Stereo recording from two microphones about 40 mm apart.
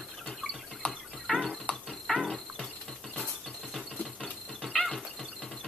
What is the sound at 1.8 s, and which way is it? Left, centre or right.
Mechanisms, centre.